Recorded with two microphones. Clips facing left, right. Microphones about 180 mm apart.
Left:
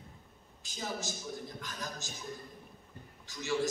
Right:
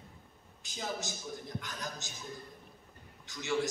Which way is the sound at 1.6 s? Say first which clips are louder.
Even; 20° right (ahead or behind).